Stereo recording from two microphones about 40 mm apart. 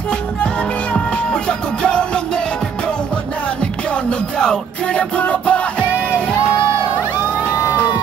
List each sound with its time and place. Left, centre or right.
0.9 s music: left
4.4 s music: left